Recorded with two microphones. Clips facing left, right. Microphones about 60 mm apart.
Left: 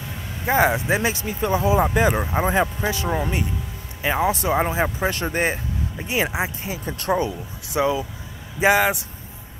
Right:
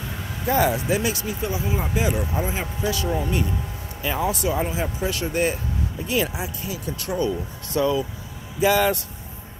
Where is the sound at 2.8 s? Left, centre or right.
Left.